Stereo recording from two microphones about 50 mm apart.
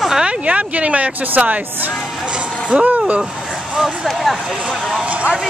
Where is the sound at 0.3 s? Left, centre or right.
Right.